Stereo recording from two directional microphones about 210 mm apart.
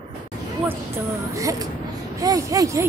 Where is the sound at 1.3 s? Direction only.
15° right (ahead or behind).